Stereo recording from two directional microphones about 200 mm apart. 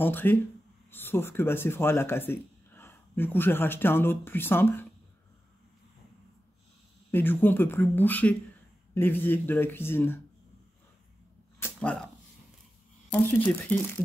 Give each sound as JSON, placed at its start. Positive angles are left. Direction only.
{"t": 0.0, "sound": "speech", "side_deg": 10}
{"t": 7.1, "sound": "speech", "side_deg": 10}
{"t": 11.6, "sound": "a sound", "side_deg": 5}
{"t": 13.1, "sound": "speech", "side_deg": 10}